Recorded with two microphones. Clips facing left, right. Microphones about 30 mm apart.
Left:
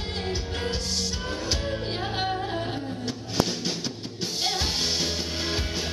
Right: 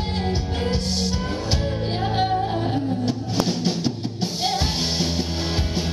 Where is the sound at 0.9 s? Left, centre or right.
Centre.